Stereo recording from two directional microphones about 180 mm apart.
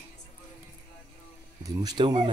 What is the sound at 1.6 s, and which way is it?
Speech, 25° right (ahead or behind).